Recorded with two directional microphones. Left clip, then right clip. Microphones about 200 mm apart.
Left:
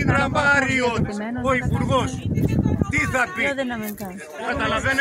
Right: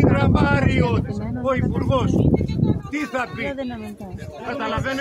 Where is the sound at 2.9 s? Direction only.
45° left (ahead or behind).